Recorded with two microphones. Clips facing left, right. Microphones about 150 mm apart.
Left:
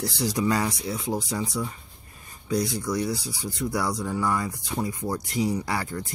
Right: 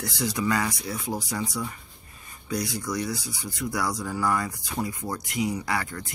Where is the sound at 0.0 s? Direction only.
30° left (ahead or behind).